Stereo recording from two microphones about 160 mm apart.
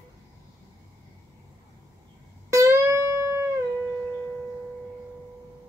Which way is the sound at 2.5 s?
20° right (ahead or behind).